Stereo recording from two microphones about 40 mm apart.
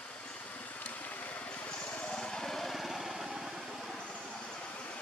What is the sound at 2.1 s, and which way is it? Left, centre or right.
Vehicle, centre.